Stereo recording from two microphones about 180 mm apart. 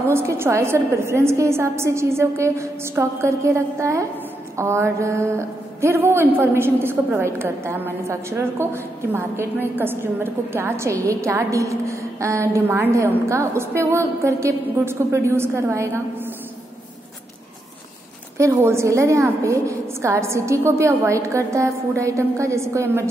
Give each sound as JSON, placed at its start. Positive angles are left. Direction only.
{"t": 0.1, "sound": "a woman's voice", "side_deg": -15}
{"t": 18.4, "sound": "a woman's voice", "side_deg": -15}